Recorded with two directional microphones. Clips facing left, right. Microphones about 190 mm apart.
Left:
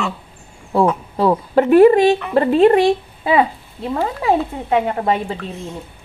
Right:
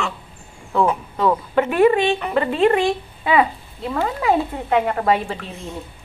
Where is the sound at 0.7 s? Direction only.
30° left (ahead or behind).